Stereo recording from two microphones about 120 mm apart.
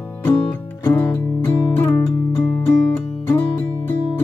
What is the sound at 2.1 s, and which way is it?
Music, 30° left (ahead or behind).